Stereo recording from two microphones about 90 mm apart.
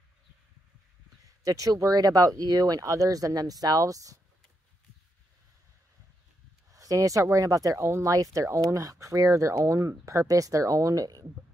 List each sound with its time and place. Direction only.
1.4 s speech: 40° right (ahead or behind)
6.7 s speech: 40° right (ahead or behind)